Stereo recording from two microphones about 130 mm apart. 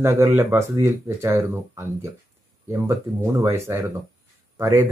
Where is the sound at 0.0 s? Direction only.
25° right (ahead or behind).